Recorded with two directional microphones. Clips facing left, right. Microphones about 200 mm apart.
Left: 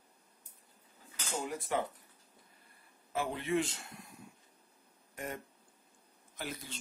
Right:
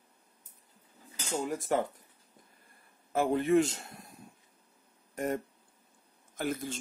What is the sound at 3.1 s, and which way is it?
A man's voice, 45° right (ahead or behind).